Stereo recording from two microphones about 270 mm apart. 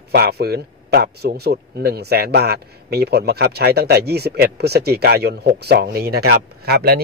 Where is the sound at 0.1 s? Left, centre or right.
Right.